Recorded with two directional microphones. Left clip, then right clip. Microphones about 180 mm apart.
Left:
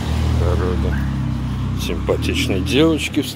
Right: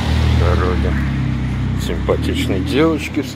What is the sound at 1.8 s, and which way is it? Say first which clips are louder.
Speech: right 1 dB; 30° left (ahead or behind).